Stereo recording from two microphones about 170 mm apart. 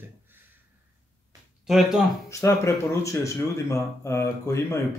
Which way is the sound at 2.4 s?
15° left (ahead or behind).